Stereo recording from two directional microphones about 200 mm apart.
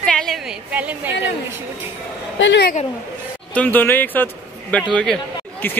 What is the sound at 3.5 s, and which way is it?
A man's voice, 10° left (ahead or behind).